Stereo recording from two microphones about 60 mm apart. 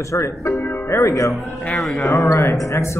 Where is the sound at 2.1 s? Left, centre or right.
Left.